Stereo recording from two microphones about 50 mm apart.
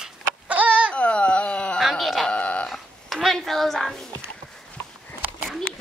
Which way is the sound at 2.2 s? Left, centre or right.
Left.